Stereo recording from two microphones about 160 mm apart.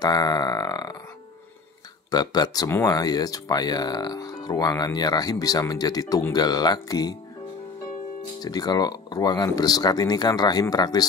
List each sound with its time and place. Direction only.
0.0 s speech: 25° left (ahead or behind)
2.0 s speech: 25° left (ahead or behind)
8.4 s speech: 25° left (ahead or behind)